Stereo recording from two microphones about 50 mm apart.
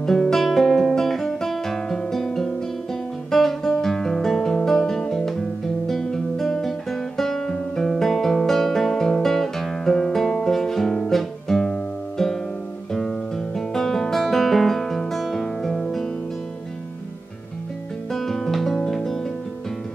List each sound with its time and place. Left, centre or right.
0.0 s guitar: centre
14.2 s music: centre
18.1 s music: centre